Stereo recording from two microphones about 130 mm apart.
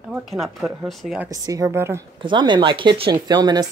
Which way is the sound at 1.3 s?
25° right (ahead or behind).